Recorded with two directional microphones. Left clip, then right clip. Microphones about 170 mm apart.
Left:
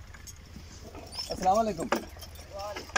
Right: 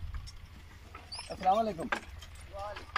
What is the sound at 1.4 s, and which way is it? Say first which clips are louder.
Speech: left 3 dB; 5° left (ahead or behind).